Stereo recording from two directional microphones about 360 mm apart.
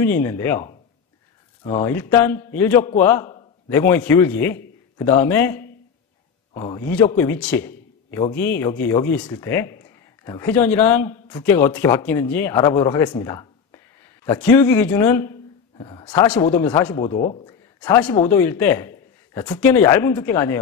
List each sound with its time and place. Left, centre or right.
0.0 s a man's voice: centre
1.6 s speech: centre
1.9 s a man's voice: centre
16.9 s a man's voice: centre
17.7 s a man's voice: centre